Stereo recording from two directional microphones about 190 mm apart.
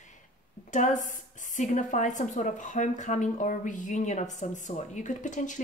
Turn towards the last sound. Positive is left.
turn(degrees=40)  # may be behind; listen again after turning